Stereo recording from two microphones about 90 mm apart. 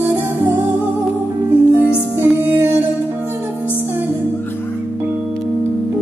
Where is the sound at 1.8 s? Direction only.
20° right (ahead or behind).